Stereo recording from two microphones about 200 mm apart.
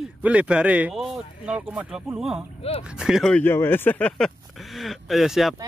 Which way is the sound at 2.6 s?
30° left (ahead or behind).